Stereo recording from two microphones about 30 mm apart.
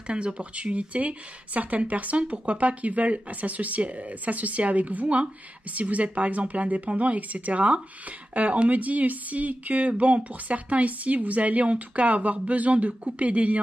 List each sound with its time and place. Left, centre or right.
0.0 s speech: right
0.9 s speech: right
2.1 s speech: right
5.8 s speech: right